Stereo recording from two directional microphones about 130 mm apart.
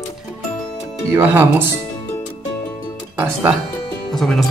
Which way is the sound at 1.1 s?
15° right (ahead or behind).